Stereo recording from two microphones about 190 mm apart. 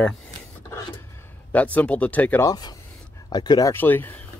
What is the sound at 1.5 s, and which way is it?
Speech, 10° left (ahead or behind).